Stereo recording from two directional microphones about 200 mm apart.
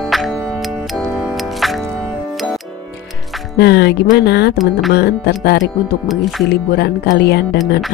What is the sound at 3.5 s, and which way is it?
Speech, 55° left (ahead or behind).